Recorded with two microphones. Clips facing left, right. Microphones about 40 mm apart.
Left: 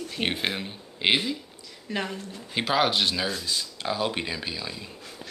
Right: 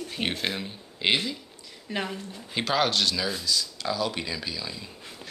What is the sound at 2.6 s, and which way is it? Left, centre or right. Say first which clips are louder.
Speech: left 1 dB; centre.